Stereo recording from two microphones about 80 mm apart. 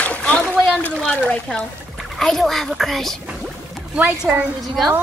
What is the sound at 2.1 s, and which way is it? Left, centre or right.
A child's voice, centre.